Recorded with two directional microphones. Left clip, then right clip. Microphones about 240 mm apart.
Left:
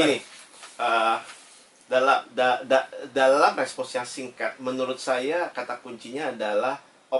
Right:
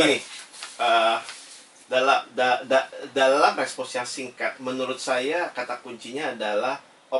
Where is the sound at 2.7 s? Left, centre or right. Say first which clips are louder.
Even; centre.